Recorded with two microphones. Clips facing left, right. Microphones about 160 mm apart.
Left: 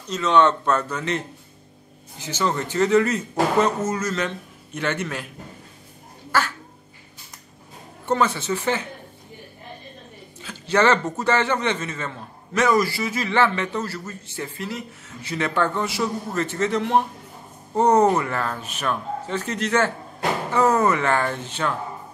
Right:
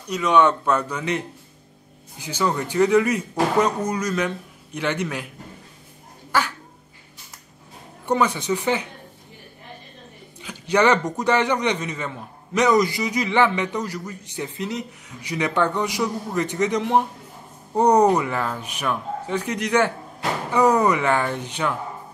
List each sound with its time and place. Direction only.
0.0 s a man's voice: 10° right (ahead or behind)
6.3 s duck: 15° right (ahead or behind)
8.0 s a man's voice: 15° right (ahead or behind)
10.4 s a man's voice: 15° right (ahead or behind)